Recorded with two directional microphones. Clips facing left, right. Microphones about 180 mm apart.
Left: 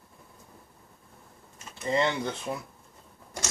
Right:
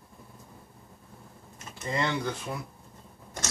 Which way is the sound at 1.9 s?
20° left (ahead or behind).